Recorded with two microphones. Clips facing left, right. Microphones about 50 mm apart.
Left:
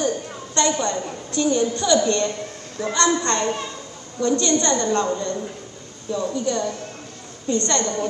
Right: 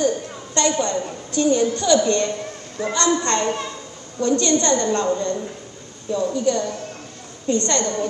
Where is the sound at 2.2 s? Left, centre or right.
Right.